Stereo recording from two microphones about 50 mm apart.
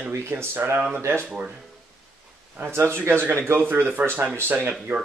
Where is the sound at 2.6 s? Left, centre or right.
Right.